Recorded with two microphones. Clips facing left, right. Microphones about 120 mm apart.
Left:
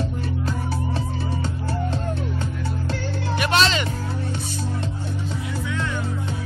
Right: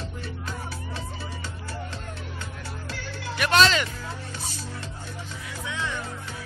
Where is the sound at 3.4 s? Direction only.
Centre (ahead or behind).